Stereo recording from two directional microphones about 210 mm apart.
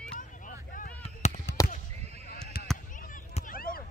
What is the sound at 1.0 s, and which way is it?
Fireworks, 35° left (ahead or behind).